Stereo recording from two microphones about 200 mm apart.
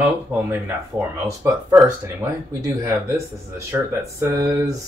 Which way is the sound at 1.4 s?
15° right (ahead or behind).